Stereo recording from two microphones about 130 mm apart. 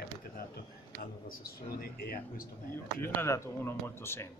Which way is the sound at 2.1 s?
90° left.